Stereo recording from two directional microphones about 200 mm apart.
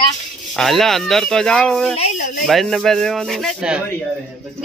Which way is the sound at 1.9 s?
40° left (ahead or behind).